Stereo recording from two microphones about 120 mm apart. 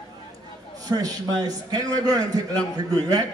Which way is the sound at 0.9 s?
30° right (ahead or behind).